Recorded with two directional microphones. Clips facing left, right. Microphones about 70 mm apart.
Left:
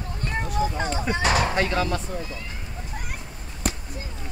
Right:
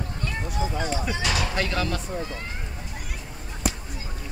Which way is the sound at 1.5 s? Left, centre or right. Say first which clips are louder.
Left 3 dB; left.